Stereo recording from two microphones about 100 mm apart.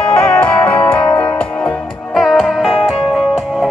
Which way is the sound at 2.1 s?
Centre (ahead or behind).